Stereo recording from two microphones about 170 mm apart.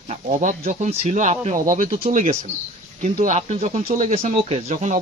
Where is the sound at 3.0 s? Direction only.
45° right (ahead or behind).